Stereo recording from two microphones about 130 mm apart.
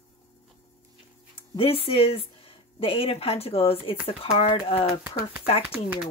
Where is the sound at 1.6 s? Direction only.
45° left (ahead or behind).